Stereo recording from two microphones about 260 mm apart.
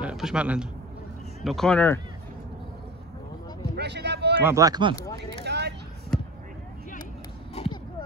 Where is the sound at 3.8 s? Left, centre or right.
Right.